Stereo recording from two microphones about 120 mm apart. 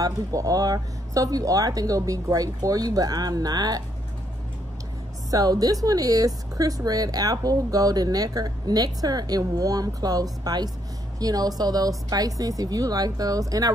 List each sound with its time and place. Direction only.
0.0 s a woman's voice: 30° right (ahead or behind)
5.3 s a woman's voice: 30° right (ahead or behind)